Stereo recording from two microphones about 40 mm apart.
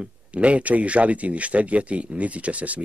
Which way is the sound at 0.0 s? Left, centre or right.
Right.